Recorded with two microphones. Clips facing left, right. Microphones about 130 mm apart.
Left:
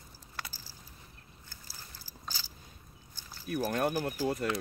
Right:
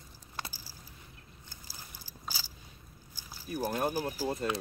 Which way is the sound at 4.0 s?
10° right (ahead or behind).